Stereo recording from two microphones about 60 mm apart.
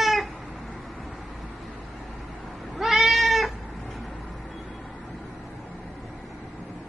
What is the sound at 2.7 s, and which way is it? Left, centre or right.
Cat, centre.